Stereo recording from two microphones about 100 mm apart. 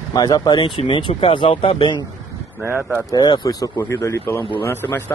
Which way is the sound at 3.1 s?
45° left (ahead or behind).